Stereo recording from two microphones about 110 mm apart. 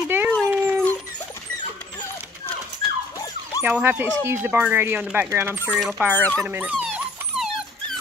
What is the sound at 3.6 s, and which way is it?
Speech, 15° right (ahead or behind).